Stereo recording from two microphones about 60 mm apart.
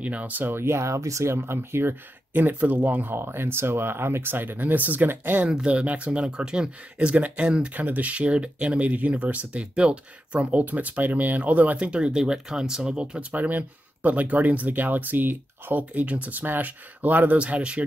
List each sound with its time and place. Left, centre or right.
0.0 s speech: right
5.5 s speech: centre
7.7 s speech: right
17.4 s speech: centre